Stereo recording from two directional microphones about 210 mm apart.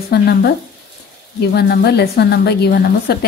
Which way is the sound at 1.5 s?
50° left (ahead or behind).